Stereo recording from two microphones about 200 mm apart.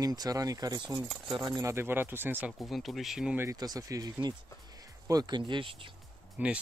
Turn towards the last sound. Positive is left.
turn(degrees=-5)  # may be behind; listen again after turning